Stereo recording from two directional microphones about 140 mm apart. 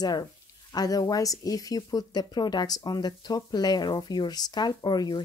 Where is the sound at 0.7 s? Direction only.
25° left (ahead or behind).